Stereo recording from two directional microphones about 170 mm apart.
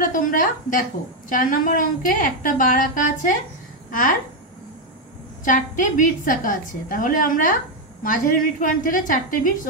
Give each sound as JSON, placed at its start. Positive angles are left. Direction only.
{"t": 0.0, "sound": "a woman's voice", "side_deg": 50}
{"t": 5.4, "sound": "a woman's voice", "side_deg": 50}